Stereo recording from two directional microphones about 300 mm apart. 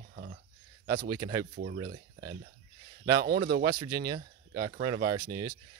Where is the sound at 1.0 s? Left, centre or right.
Centre.